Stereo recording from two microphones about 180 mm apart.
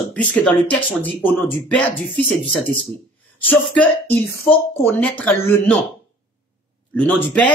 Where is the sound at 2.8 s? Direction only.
5° left (ahead or behind).